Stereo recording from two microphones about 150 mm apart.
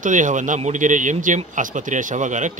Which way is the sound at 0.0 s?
60° right (ahead or behind).